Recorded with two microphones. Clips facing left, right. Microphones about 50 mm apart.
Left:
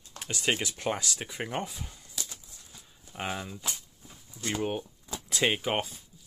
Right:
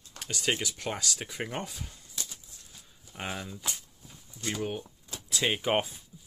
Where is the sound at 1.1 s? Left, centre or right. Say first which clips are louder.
Left 1 dB; centre.